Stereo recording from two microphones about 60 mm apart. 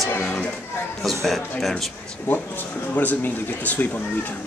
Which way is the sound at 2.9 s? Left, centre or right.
Left.